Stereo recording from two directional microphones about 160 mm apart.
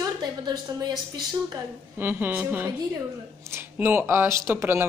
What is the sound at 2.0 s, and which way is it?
Speech, 10° right (ahead or behind).